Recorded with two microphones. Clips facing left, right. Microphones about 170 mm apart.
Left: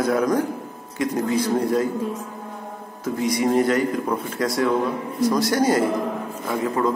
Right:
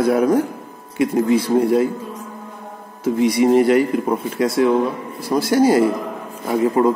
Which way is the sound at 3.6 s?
10° right (ahead or behind).